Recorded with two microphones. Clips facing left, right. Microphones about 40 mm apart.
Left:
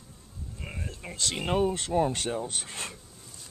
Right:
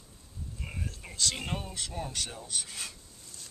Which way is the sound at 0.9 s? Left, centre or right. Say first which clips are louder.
Even; left.